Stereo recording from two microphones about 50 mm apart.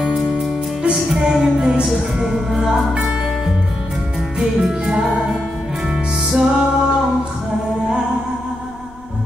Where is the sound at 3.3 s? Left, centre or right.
Centre.